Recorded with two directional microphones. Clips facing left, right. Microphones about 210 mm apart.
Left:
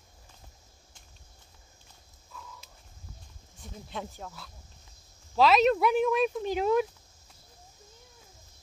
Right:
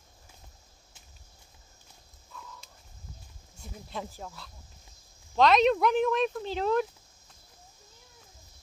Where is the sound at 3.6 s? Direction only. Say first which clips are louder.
Even; centre (ahead or behind).